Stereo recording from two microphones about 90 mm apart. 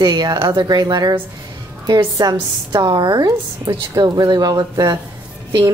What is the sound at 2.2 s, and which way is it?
A woman's voice, 50° right (ahead or behind).